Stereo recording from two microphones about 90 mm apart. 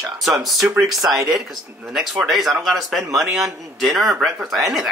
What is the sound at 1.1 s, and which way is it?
Speech, 40° right (ahead or behind).